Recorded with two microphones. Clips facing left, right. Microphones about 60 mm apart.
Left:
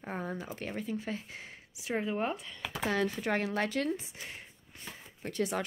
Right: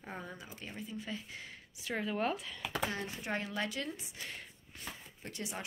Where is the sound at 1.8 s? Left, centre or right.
Left.